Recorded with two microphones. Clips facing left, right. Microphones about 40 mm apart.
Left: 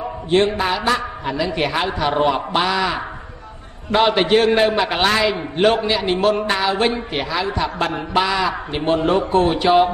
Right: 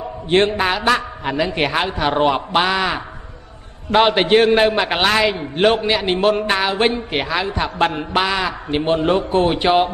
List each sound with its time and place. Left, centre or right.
0.3 s a man's voice: right
3.9 s a man's voice: right
5.9 s speech: right